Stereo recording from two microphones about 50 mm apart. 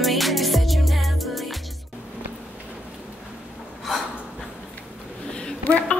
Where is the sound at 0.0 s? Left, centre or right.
Centre.